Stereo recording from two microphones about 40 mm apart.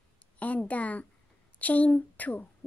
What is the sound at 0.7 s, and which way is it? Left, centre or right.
A woman's voice, left.